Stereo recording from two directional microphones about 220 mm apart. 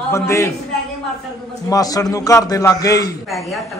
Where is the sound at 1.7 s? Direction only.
15° left (ahead or behind).